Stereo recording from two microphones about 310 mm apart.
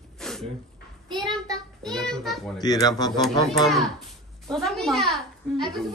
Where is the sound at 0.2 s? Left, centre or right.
Centre.